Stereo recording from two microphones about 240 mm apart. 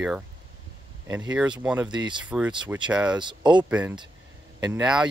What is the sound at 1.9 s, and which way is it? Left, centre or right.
Speech, centre.